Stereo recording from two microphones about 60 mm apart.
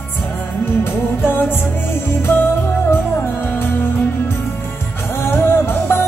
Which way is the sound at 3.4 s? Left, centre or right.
Left.